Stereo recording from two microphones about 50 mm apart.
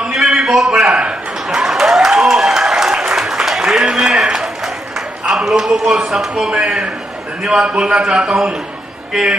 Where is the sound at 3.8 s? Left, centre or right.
Centre.